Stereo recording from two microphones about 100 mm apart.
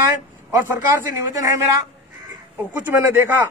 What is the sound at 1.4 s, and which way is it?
Speech, 30° right (ahead or behind).